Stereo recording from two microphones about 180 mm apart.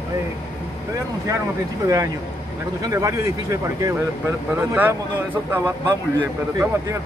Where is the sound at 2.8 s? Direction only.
20° right (ahead or behind).